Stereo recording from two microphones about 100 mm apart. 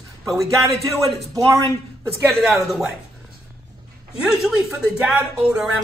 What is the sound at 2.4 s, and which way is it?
Speech, centre (ahead or behind).